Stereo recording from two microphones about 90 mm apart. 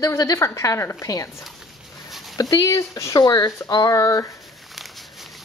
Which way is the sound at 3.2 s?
50° left (ahead or behind).